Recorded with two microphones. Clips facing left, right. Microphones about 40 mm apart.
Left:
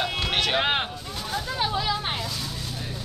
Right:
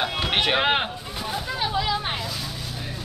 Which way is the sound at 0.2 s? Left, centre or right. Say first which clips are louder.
Right 3 dB; right.